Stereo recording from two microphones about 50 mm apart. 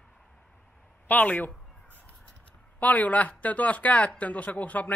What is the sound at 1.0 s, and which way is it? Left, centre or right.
Speech, left.